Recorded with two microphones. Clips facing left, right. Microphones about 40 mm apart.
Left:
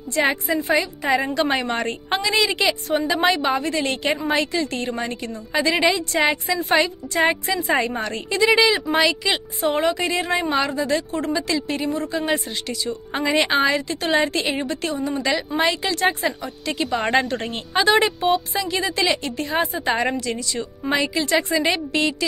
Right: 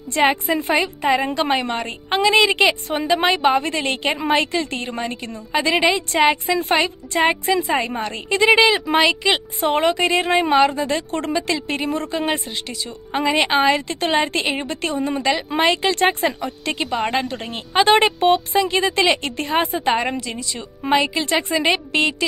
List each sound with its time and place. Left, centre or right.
0.2 s a woman's voice: right
2.1 s a woman's voice: right
7.6 s a woman's voice: centre
8.3 s a woman's voice: right
11.1 s a woman's voice: right
12.8 s a woman's voice: centre
13.7 s a woman's voice: right
14.5 s a woman's voice: centre
14.8 s a woman's voice: right
16.8 s speech: centre
18.3 s a woman's voice: right
19.9 s a woman's voice: centre